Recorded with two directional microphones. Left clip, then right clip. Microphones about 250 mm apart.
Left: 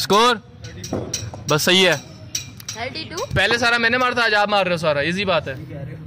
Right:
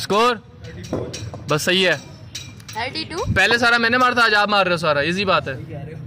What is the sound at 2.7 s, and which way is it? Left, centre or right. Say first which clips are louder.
Speech: right 3 dB; right.